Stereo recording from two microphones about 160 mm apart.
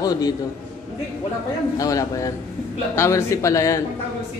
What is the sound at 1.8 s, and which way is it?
Speech, 20° left (ahead or behind).